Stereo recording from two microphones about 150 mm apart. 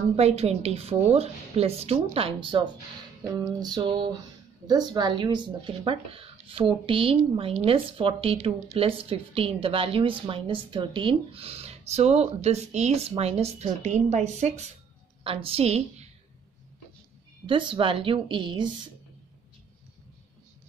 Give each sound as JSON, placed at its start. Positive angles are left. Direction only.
{"t": 0.1, "sound": "a woman's voice", "side_deg": -45}
{"t": 3.3, "sound": "a sound", "side_deg": -25}
{"t": 4.6, "sound": "a woman's voice", "side_deg": -30}
{"t": 15.2, "sound": "speech", "side_deg": -40}
{"t": 17.5, "sound": "speech", "side_deg": -35}